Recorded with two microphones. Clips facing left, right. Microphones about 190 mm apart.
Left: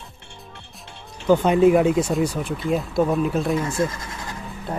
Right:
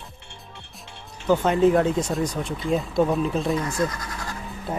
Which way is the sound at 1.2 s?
15° left (ahead or behind).